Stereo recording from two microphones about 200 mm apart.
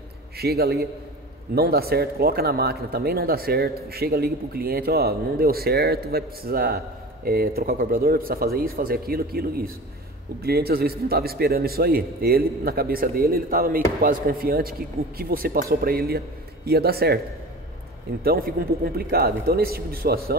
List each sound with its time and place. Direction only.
0.4 s speech: 50° right (ahead or behind)
18.2 s speech: 50° right (ahead or behind)